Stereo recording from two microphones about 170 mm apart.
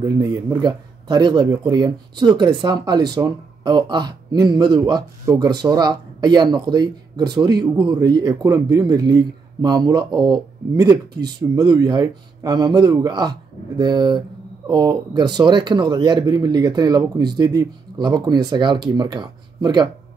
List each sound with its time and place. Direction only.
0.2 s speech: 25° right (ahead or behind)